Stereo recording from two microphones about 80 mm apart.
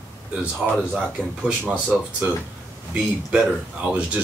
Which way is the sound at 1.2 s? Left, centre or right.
Centre.